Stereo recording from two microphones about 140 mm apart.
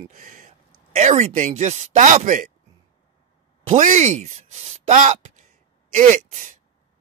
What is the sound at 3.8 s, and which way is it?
Speech, 60° right (ahead or behind).